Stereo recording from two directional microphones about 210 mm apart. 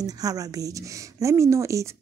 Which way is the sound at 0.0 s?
15° right (ahead or behind).